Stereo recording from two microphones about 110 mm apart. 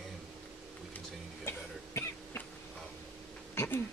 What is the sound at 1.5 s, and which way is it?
Cough, 25° left (ahead or behind).